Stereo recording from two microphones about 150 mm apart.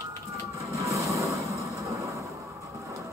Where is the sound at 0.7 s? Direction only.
20° right (ahead or behind).